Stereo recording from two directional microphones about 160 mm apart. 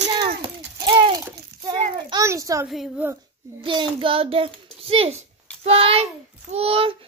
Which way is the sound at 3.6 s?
30° right (ahead or behind).